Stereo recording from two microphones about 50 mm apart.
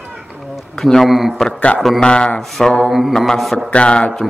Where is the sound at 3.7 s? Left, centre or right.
Left.